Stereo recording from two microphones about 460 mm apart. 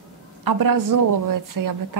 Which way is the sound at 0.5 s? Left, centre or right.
Right.